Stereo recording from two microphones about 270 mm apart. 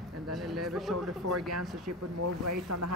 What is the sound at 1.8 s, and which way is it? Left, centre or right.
Speech, right.